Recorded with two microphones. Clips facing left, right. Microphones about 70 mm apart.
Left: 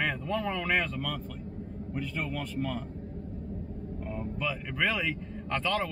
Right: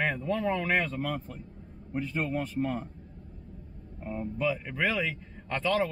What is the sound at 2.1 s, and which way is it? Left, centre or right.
Speech, right.